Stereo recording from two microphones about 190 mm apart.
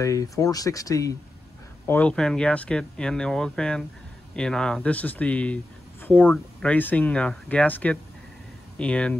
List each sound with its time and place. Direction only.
0.0 s speech: 15° left (ahead or behind)
1.9 s speech: 5° left (ahead or behind)